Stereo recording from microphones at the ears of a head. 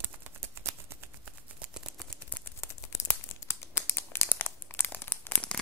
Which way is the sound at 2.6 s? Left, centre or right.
Left.